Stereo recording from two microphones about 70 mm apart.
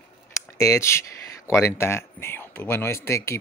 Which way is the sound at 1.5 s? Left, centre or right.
Left.